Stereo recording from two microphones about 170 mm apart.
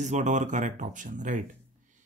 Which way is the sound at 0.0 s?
45° right (ahead or behind).